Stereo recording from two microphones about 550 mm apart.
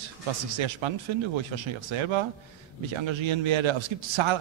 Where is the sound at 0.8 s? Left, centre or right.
Right.